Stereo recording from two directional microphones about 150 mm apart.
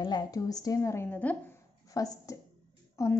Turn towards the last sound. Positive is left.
turn(degrees=20)  # may be behind; listen again after turning